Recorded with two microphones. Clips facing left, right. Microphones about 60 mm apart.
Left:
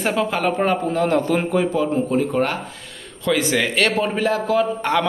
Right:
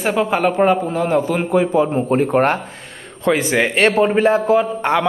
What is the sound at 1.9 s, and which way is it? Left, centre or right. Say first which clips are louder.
Speech: right 4 dB; right.